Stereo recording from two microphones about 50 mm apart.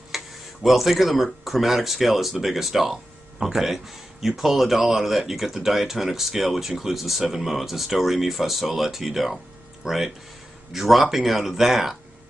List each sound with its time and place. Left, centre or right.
0.1 s tick-tock: centre
0.7 s speech: centre